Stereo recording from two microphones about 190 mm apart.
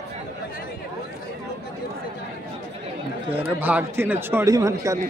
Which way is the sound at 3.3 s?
10° right (ahead or behind).